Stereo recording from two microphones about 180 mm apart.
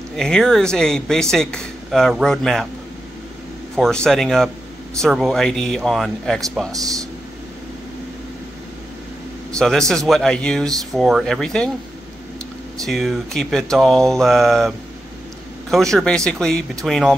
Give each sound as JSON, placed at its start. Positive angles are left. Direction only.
{"t": 0.1, "sound": "speech", "side_deg": 0}
{"t": 3.7, "sound": "speech", "side_deg": 5}
{"t": 6.7, "sound": "speech", "side_deg": -20}
{"t": 9.6, "sound": "speech", "side_deg": 5}
{"t": 12.8, "sound": "speech", "side_deg": 0}
{"t": 15.7, "sound": "speech", "side_deg": 0}